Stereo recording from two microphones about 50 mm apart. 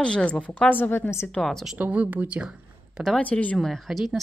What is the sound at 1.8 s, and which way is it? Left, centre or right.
Speech, right.